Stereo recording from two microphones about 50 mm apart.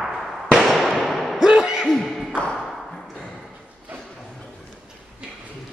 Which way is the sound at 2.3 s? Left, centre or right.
Left.